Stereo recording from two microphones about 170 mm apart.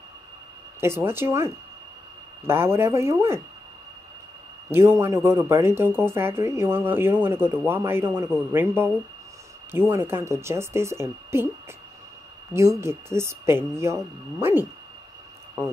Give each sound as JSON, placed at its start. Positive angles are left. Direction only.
{"t": 0.7, "sound": "speech", "side_deg": -15}
{"t": 4.6, "sound": "speech", "side_deg": -15}
{"t": 12.5, "sound": "speech", "side_deg": -15}